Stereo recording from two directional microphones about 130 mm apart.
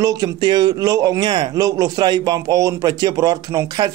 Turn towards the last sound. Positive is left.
turn(degrees=-30)  # may be behind; listen again after turning